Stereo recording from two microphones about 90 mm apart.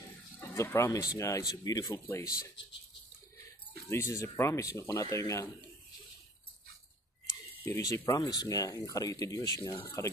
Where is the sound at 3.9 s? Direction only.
30° left (ahead or behind).